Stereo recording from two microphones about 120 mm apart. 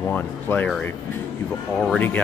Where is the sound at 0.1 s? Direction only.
15° left (ahead or behind).